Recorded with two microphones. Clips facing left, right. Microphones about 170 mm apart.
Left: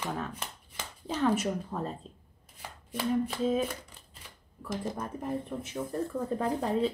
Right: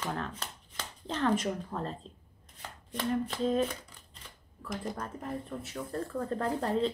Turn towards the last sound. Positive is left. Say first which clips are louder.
# left 1 dB
turn(degrees=10)  # may be behind; listen again after turning